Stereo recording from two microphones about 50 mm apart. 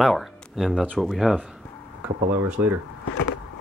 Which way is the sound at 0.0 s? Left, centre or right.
Centre.